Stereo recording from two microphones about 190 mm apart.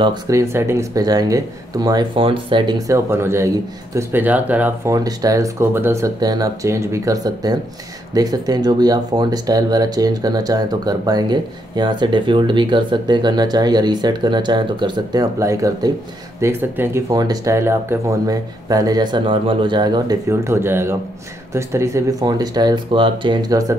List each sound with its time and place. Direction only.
0.0 s speech: 20° right (ahead or behind)